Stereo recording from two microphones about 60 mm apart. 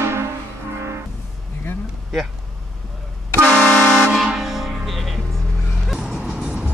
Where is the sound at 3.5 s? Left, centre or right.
Centre.